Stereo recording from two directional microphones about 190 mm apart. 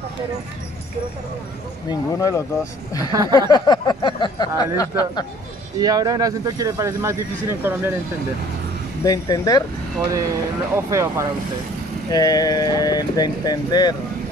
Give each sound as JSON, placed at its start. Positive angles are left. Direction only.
{"t": 1.9, "sound": "speech", "side_deg": 15}
{"t": 3.1, "sound": "a sound", "side_deg": -20}
{"t": 3.5, "sound": "speech", "side_deg": 20}
{"t": 5.8, "sound": "speech", "side_deg": -20}
{"t": 9.0, "sound": "speech", "side_deg": 20}
{"t": 9.9, "sound": "speech", "side_deg": -15}
{"t": 12.1, "sound": "speech", "side_deg": 20}